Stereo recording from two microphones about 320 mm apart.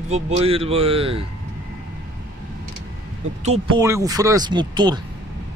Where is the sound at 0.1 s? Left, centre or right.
Centre.